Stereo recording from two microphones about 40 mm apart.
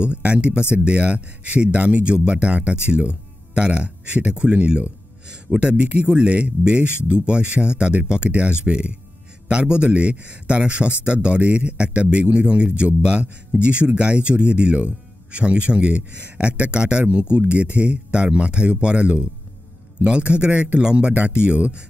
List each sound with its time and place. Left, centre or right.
0.0 s a man's voice: right
21.5 s speech: right